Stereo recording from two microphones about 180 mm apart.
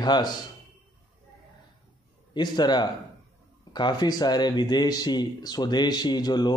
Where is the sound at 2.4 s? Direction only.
25° left (ahead or behind).